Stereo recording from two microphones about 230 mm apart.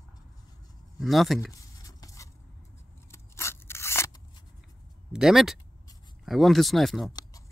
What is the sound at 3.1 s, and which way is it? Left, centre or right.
Scissors, centre.